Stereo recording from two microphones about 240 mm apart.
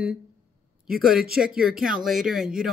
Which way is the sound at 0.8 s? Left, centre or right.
Centre.